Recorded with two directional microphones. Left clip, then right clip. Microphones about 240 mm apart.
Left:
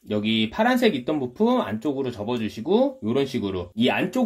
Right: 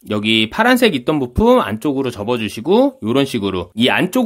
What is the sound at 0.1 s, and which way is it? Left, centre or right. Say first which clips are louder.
Speech: right 9 dB; right.